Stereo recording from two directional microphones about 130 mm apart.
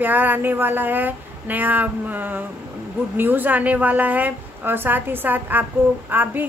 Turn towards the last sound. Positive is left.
turn(degrees=-15)  # may be behind; listen again after turning